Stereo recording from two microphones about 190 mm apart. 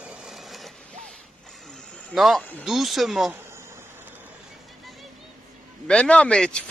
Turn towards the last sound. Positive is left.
turn(degrees=5)  # may be behind; listen again after turning